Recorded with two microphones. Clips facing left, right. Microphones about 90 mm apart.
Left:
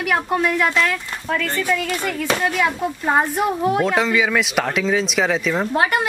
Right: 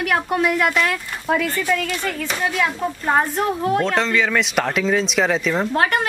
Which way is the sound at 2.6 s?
10° left (ahead or behind).